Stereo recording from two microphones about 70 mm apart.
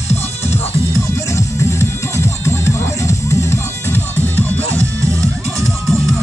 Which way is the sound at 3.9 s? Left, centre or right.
Left.